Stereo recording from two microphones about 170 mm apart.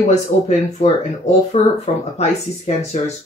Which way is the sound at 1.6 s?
40° left (ahead or behind).